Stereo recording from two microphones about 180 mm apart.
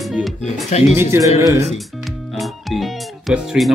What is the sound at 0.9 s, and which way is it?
Speech, 15° right (ahead or behind).